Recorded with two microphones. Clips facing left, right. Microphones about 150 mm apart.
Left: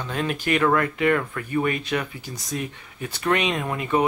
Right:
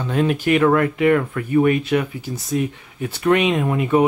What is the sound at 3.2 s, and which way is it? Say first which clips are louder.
Speech: right 6 dB; 15° right (ahead or behind).